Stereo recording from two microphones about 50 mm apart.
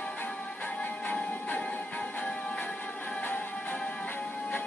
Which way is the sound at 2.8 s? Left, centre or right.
Left.